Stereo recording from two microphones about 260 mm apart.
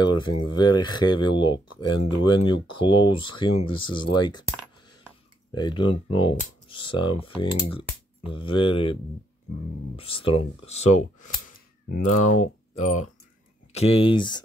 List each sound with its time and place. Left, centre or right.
0.4 s speech: centre
4.1 s a sound: centre
5.5 s speech: centre
9.9 s speech: left
12.1 s speech: left
12.7 s speech: left